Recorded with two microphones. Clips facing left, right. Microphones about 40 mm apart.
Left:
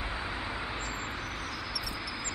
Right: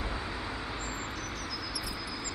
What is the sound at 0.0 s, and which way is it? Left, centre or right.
Vehicle, centre.